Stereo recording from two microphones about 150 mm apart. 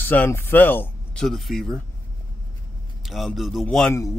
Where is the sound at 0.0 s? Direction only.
15° left (ahead or behind).